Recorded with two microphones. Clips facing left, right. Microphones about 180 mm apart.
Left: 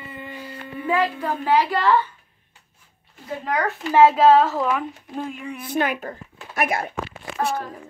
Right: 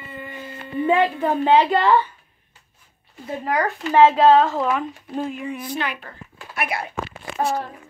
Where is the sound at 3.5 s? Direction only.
Centre (ahead or behind).